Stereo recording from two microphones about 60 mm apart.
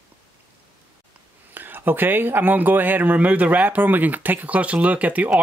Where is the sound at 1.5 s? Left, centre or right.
Right.